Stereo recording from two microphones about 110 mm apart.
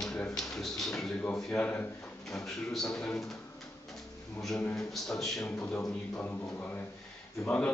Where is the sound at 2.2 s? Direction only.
Centre (ahead or behind).